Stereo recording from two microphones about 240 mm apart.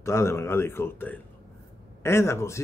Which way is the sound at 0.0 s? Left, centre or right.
Centre.